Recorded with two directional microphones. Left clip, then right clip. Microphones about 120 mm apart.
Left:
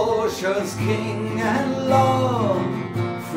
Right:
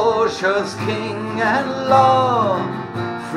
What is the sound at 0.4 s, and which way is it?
Music, 10° left (ahead or behind).